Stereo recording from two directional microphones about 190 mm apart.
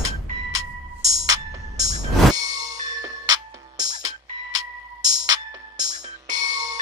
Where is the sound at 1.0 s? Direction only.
20° right (ahead or behind).